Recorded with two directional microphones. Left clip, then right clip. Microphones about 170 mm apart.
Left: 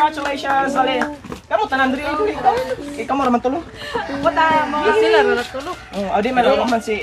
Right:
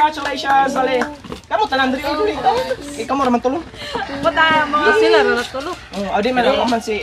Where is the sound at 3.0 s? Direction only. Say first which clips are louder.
Right 1 dB; 25° left (ahead or behind).